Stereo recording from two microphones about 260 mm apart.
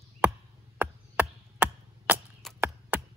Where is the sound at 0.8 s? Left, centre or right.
Centre.